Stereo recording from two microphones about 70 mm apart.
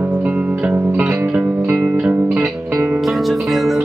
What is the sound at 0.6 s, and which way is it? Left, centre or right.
Music, centre.